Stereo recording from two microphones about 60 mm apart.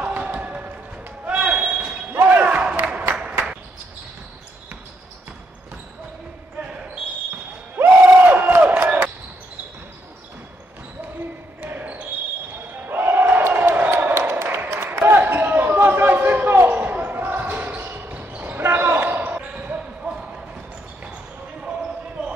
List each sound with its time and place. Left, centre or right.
0.0 s a sound: right
1.2 s basketball bounce: right
2.3 s a sound: right
7.8 s crowd: right
11.6 s basketball bounce: right
12.8 s battle cry: right
13.8 s basketball bounce: right
15.3 s a sound: right
18.1 s basketball bounce: right
18.6 s basketball bounce: right
19.5 s basketball bounce: centre